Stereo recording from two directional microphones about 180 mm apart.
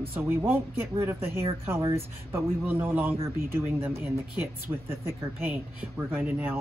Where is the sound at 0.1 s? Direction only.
10° right (ahead or behind).